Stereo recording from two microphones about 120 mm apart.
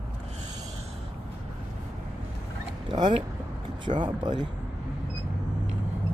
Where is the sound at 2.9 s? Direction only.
40° right (ahead or behind).